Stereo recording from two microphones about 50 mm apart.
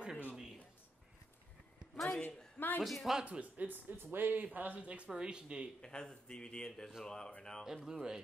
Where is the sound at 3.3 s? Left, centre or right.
Right.